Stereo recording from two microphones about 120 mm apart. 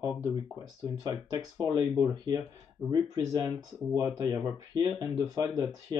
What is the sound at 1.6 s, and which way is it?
Speech, 35° right (ahead or behind).